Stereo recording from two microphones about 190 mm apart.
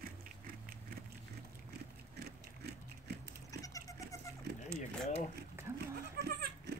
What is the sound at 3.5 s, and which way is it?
Goat, 15° left (ahead or behind).